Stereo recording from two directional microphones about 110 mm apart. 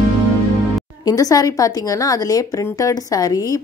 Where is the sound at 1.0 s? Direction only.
35° left (ahead or behind).